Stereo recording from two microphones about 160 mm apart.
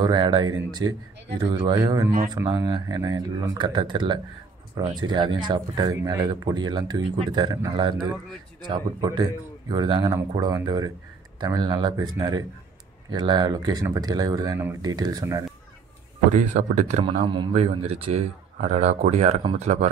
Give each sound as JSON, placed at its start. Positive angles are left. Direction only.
{"t": 0.0, "sound": "speech", "side_deg": -25}
{"t": 16.3, "sound": "speech", "side_deg": -50}